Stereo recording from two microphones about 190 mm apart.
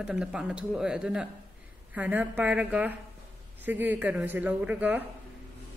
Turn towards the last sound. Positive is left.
turn(degrees=-10)  # may be behind; listen again after turning